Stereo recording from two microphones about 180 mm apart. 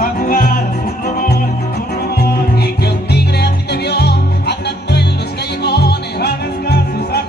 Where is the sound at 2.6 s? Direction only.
65° left (ahead or behind).